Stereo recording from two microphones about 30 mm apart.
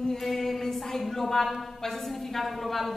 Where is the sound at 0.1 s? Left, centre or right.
Centre.